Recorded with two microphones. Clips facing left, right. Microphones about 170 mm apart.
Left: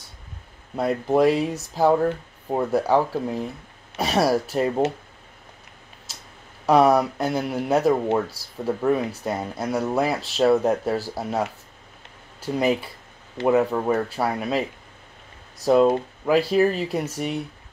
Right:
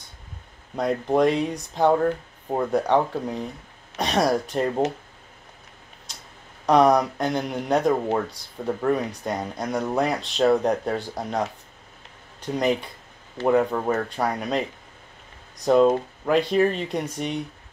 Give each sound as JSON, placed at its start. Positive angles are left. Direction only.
{"t": 0.7, "sound": "speech", "side_deg": 5}
{"t": 6.1, "sound": "a sound", "side_deg": 5}
{"t": 6.6, "sound": "speech", "side_deg": 5}